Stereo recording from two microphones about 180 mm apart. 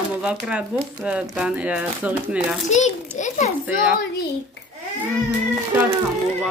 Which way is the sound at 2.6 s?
40° left (ahead or behind).